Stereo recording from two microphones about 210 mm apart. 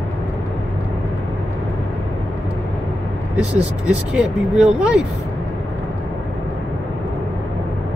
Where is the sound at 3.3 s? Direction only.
5° right (ahead or behind).